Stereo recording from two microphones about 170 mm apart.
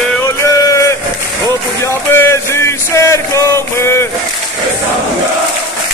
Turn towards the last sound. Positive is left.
turn(degrees=15)  # may be behind; listen again after turning